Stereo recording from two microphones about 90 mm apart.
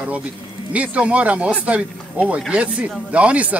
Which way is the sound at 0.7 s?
15° right (ahead or behind).